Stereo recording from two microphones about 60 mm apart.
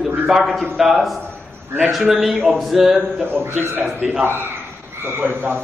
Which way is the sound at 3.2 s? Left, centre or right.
Right.